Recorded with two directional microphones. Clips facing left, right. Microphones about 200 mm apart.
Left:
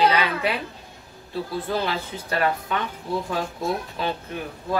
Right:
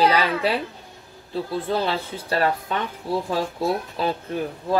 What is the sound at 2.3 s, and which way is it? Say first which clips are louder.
Speech: right 1 dB; 30° right (ahead or behind).